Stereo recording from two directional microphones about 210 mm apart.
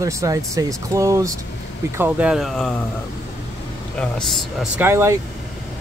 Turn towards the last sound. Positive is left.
turn(degrees=-10)  # may be behind; listen again after turning